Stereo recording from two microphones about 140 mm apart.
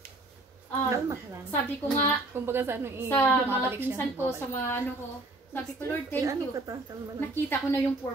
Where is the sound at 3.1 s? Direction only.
15° left (ahead or behind).